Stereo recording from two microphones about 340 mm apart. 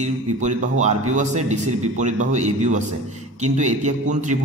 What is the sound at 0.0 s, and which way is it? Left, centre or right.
A man's voice, right.